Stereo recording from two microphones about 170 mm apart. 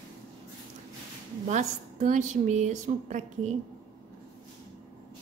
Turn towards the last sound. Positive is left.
turn(degrees=-45)  # may be behind; listen again after turning